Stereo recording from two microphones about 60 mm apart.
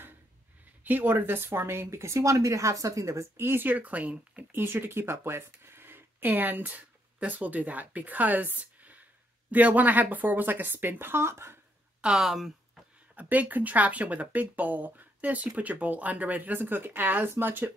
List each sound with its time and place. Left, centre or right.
0.8 s speech: right
3.3 s speech: right
4.5 s speech: right
12.0 s speech: centre
13.1 s speech: right